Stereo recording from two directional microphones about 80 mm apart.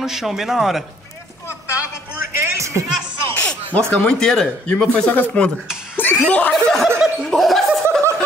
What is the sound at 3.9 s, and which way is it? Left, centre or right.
Speech, centre.